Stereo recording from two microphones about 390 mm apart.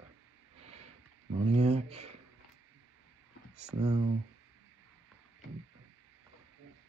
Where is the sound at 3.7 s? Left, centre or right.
Centre.